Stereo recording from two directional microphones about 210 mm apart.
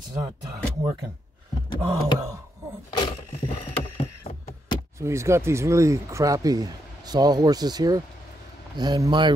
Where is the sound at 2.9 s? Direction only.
25° left (ahead or behind).